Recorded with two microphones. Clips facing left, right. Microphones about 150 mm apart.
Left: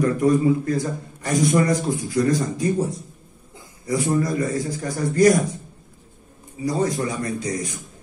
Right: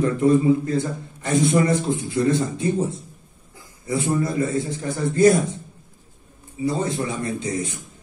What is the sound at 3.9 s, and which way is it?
Speech, 25° right (ahead or behind).